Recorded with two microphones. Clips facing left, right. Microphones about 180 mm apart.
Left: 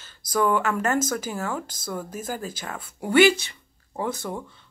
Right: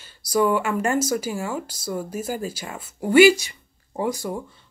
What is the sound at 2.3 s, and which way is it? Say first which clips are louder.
Speech: right 3 dB; 10° right (ahead or behind).